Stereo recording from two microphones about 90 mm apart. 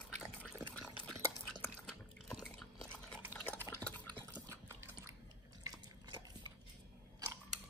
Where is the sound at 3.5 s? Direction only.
20° left (ahead or behind).